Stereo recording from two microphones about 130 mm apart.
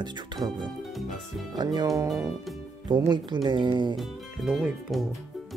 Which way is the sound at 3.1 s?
35° right (ahead or behind).